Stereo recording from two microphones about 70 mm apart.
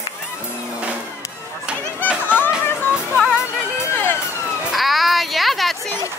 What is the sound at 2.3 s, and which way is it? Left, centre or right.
Music, left.